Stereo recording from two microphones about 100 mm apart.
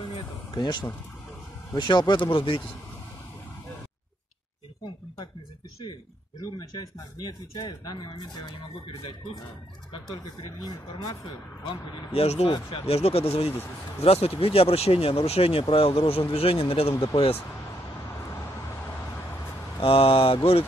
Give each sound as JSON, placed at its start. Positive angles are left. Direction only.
{"t": 0.1, "sound": "vehicle", "side_deg": 45}
{"t": 1.7, "sound": "speech", "side_deg": 45}
{"t": 6.4, "sound": "speech", "side_deg": 40}
{"t": 10.6, "sound": "speech", "side_deg": 40}
{"t": 12.1, "sound": "speech", "side_deg": 90}
{"t": 12.4, "sound": "speech", "side_deg": 50}
{"t": 12.8, "sound": "speech", "side_deg": 85}
{"t": 15.7, "sound": "speech", "side_deg": 65}
{"t": 19.8, "sound": "speech", "side_deg": 70}